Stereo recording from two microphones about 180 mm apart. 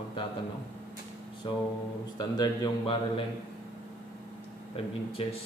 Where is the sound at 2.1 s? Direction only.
25° left (ahead or behind).